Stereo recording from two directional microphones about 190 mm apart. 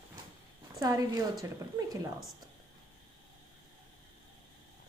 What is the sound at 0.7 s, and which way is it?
A woman's voice, 20° right (ahead or behind).